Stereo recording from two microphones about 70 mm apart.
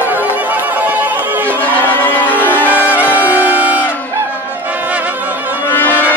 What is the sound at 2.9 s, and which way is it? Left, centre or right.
Music, right.